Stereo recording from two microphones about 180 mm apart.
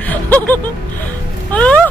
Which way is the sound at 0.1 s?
10° left (ahead or behind).